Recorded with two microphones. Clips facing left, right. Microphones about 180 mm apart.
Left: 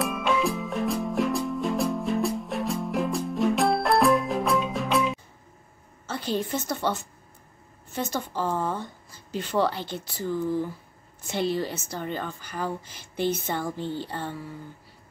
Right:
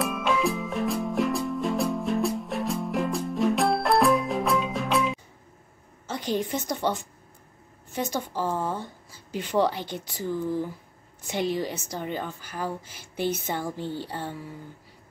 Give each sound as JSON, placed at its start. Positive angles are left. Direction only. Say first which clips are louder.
{"t": 0.0, "sound": "music", "louder": "even", "side_deg": 0}
{"t": 6.0, "sound": "a woman's voice", "louder": "right 1 dB", "side_deg": -15}